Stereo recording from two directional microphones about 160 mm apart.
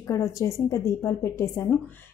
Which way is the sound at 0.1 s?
20° left (ahead or behind).